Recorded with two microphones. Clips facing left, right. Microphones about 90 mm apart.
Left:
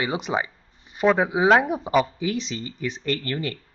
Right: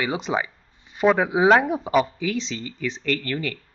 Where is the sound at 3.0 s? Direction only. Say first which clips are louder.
Right 1 dB; 30° left (ahead or behind).